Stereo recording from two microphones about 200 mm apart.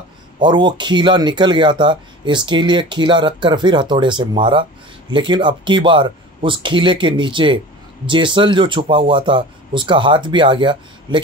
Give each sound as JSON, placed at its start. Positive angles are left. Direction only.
{"t": 0.4, "sound": "speech", "side_deg": -25}